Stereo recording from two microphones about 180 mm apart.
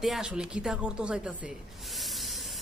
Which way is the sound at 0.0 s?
5° right (ahead or behind).